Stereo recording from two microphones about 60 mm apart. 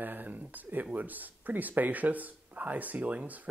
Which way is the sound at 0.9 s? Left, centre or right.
Right.